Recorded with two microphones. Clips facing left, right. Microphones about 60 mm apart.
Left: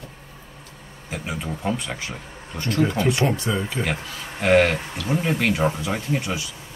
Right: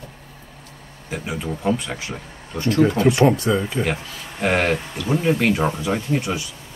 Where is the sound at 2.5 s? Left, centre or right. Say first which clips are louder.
Right 5 dB; centre.